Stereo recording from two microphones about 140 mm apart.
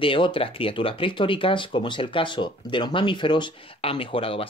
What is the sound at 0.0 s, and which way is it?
Speech, 40° left (ahead or behind).